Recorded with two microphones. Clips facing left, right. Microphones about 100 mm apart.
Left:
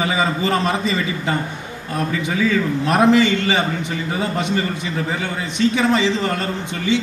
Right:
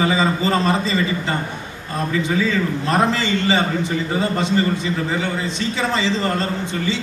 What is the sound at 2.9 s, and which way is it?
A man's voice, 15° left (ahead or behind).